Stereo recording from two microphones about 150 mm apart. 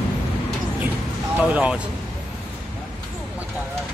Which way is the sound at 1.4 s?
10° right (ahead or behind).